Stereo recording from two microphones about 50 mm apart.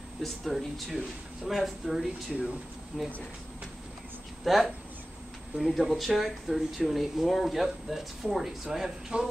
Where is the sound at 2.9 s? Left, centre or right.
Centre.